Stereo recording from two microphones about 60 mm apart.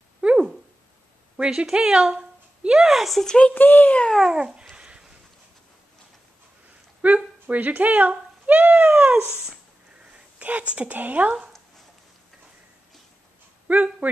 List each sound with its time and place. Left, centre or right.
0.2 s dog: centre
1.3 s speech: centre
2.9 s speech: centre
3.3 s speech: centre
3.5 s a child's voice: left
4.3 s babbling: centre
7.0 s speech: right
9.0 s dog: centre
10.1 s speech: right
13.7 s speech: right